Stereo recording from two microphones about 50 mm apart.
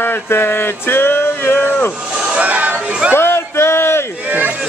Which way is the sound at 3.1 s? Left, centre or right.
Left.